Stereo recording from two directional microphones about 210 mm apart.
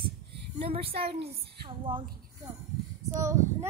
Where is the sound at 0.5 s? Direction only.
25° right (ahead or behind).